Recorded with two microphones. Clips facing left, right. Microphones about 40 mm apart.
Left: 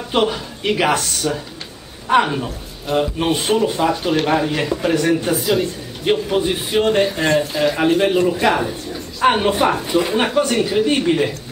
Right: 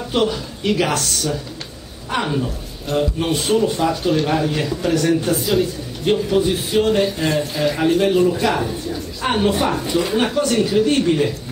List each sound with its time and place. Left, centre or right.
0.1 s a man's voice: left
5.3 s a man's voice: centre
6.0 s a man's voice: centre